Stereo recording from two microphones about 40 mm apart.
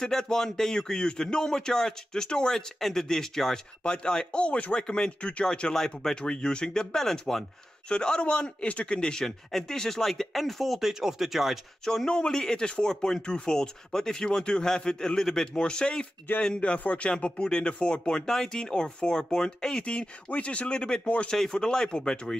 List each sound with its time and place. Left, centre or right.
0.0 s a man's voice: centre; by 4.8 s left
4.8 s speech: left
7.9 s speech: left
9.2 s a man's voice: centre
10.9 s speech: centre
11.8 s a man's voice: centre
15.6 s speech: left
17.1 s speech: left